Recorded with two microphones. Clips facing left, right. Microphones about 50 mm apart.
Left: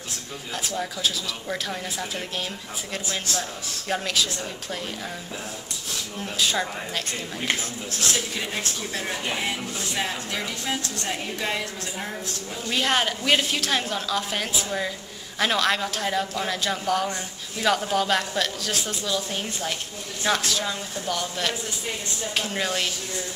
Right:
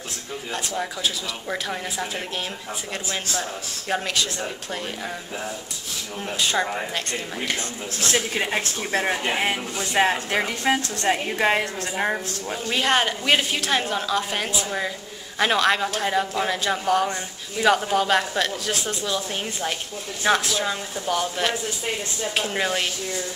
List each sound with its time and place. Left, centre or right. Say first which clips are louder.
0.5 s a woman's voice: right 1 dB; centre
6.3 s speech: right 1 dB; centre
8.1 s speech: right 7 dB; right
12.8 s a woman's voice: right 2 dB; centre
19.0 s a woman's voice: even; centre
20.6 s a woman's voice: right 3 dB; centre